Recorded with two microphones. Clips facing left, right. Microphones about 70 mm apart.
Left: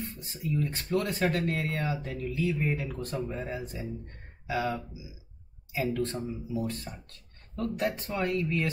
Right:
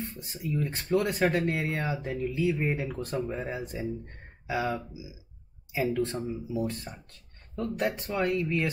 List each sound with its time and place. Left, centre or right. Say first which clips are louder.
0.3 s speech: even; right